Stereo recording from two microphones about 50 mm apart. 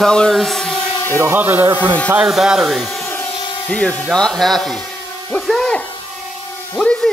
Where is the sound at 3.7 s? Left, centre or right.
Left.